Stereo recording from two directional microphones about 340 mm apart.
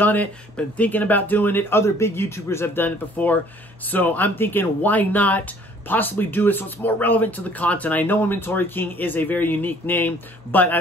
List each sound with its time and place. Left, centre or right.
0.0 s speech: centre